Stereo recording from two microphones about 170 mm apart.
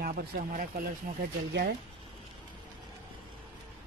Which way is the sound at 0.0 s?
65° right (ahead or behind).